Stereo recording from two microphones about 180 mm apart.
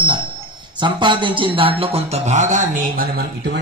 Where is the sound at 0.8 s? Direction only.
25° right (ahead or behind); by 3.6 s 55° right (ahead or behind).